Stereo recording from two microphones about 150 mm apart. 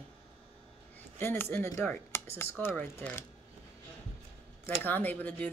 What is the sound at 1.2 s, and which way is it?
Speech, 15° left (ahead or behind).